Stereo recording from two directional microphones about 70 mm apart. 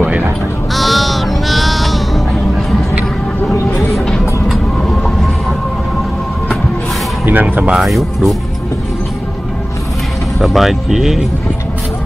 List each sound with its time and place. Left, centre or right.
0.7 s bleat: centre
3.5 s a sound: left
4.5 s train: centre
7.2 s speech: right
7.7 s speech: centre
10.4 s speech: centre